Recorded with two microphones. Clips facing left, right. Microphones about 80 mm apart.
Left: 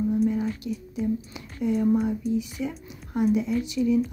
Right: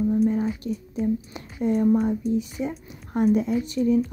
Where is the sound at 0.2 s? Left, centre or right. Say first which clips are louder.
Right 2 dB; right.